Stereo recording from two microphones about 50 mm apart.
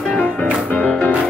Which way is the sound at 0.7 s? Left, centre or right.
Left.